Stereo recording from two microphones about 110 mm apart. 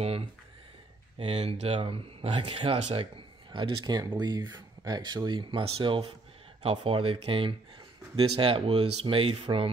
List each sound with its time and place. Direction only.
1.1 s speech: 75° right (ahead or behind)
3.5 s speech: 45° right (ahead or behind)